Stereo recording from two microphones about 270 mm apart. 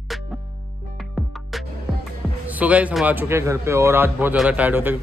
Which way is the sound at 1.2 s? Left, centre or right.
Centre.